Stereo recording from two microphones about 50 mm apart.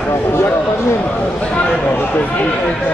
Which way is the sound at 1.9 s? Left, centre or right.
Left.